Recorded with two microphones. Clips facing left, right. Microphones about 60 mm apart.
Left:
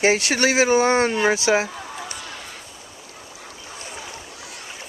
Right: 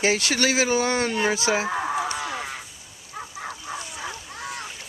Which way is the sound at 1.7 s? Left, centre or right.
Right.